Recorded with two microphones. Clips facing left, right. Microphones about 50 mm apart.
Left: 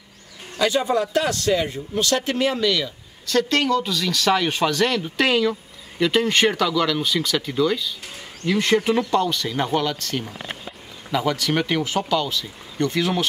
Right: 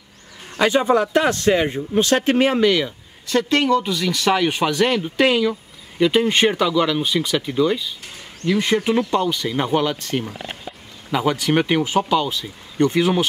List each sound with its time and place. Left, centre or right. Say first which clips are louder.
0.6 s speech: right 4 dB; right; by 13.3 s centre